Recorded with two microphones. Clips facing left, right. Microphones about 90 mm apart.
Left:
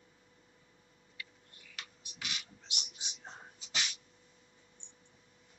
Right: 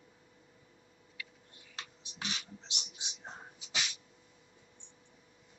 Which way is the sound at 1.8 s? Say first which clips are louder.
Right 3 dB; 30° right (ahead or behind).